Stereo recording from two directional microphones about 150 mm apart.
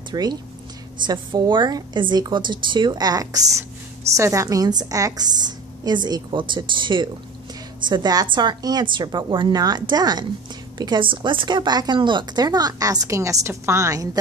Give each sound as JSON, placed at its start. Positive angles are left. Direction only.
{"t": 0.1, "sound": "a woman's voice", "side_deg": -25}